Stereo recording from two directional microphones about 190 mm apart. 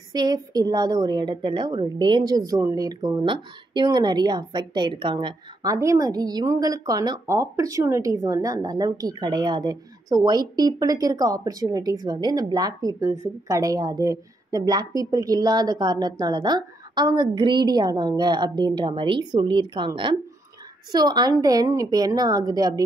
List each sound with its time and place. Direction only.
0.1 s a woman's voice: 20° right (ahead or behind)